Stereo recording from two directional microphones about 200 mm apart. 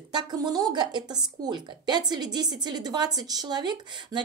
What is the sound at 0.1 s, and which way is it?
Speech, 20° right (ahead or behind).